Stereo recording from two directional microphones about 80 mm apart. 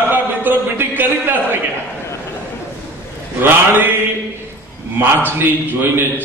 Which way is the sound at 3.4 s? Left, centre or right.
Right.